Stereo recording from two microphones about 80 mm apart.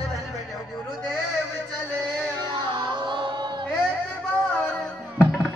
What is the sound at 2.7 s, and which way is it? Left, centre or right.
Music, right.